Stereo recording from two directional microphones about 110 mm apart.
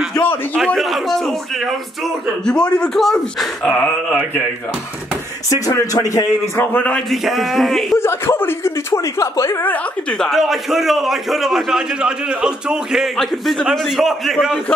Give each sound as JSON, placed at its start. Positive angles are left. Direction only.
{"t": 0.7, "sound": "a man's voice", "side_deg": 0}
{"t": 5.5, "sound": "speech", "side_deg": 35}
{"t": 6.5, "sound": "a man's voice", "side_deg": 15}
{"t": 7.1, "sound": "a man's voice", "side_deg": 0}
{"t": 8.0, "sound": "speech", "side_deg": 20}
{"t": 9.7, "sound": "a man's voice", "side_deg": 10}